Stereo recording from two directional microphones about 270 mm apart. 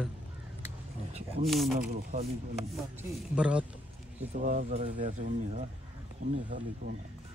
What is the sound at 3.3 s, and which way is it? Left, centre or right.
Speech, centre.